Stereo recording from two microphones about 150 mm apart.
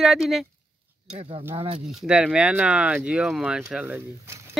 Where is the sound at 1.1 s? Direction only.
40° right (ahead or behind).